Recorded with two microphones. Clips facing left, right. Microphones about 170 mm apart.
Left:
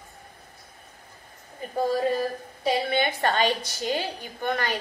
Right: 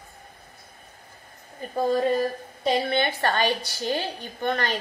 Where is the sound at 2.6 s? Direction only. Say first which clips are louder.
Right 1 dB; 10° left (ahead or behind).